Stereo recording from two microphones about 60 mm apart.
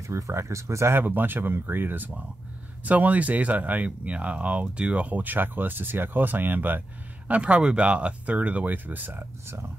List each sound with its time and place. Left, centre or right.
0.0 s speech: right
0.9 s speech: right
7.2 s speech: right